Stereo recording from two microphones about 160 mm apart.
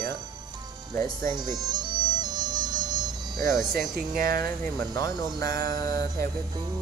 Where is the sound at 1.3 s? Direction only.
25° right (ahead or behind).